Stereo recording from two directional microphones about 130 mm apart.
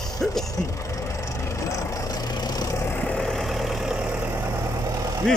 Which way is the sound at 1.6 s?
25° left (ahead or behind).